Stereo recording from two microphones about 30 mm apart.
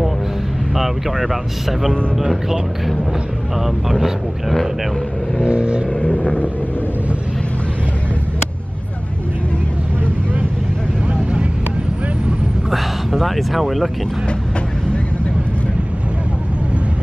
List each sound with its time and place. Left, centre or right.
0.7 s speech: centre
5.5 s vehicle: right
6.0 s vehicle: left
12.7 s speech: centre